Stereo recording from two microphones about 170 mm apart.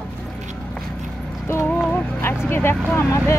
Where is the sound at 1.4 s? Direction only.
15° left (ahead or behind).